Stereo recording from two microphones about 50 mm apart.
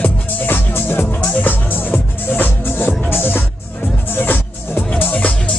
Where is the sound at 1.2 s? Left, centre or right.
Left.